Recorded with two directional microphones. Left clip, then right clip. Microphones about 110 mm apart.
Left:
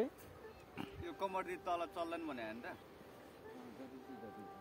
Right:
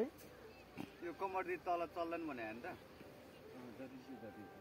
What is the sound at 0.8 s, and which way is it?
A man's voice, 35° left (ahead or behind).